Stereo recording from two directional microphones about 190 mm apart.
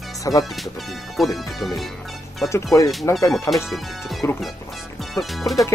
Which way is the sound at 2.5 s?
15° left (ahead or behind).